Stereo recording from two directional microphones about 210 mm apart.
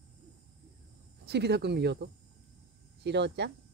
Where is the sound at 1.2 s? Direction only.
50° right (ahead or behind).